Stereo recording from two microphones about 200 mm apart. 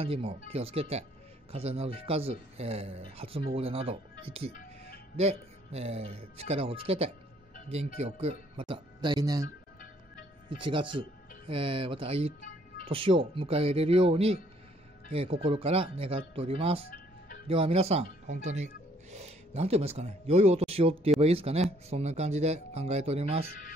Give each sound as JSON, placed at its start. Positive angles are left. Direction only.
{"t": 0.0, "sound": "speech", "side_deg": -30}
{"t": 10.5, "sound": "speech", "side_deg": -25}